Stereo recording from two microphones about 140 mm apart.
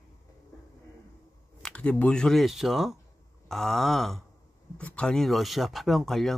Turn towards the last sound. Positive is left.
turn(degrees=0)  # may be behind; listen again after turning